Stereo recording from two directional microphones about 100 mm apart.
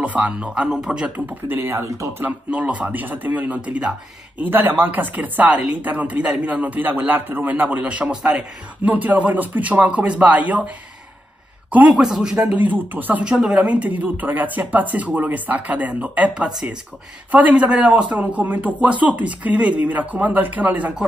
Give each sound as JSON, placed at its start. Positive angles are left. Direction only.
{"t": 0.0, "sound": "speech", "side_deg": -15}
{"t": 11.9, "sound": "speech", "side_deg": -5}